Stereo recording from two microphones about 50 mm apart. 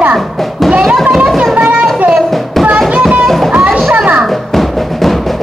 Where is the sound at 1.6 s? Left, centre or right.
Right.